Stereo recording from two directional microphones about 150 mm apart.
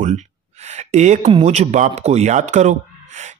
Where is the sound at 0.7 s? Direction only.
50° right (ahead or behind).